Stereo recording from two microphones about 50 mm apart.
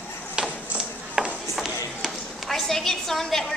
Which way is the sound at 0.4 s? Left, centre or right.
Centre.